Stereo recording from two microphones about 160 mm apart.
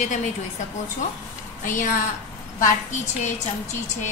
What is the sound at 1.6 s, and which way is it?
Speech, 55° left (ahead or behind).